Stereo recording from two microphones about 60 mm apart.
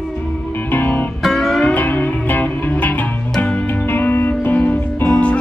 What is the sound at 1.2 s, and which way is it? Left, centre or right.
Music, centre.